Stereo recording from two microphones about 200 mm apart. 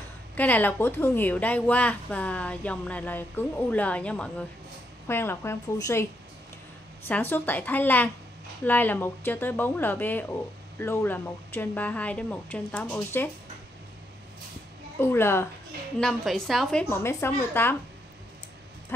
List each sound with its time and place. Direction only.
0.4 s a woman's voice: 10° left (ahead or behind)
7.1 s a woman's voice: 10° left (ahead or behind)
15.0 s a woman's voice: 10° left (ahead or behind)
16.9 s a woman's voice: 10° left (ahead or behind)